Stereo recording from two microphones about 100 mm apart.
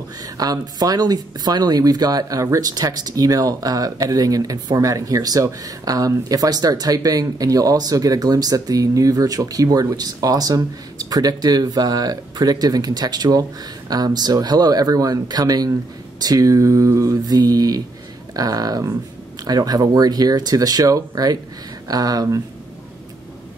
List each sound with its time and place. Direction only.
0.2 s speech: 40° right (ahead or behind)